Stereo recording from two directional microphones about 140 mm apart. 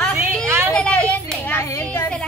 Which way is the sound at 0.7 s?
10° left (ahead or behind).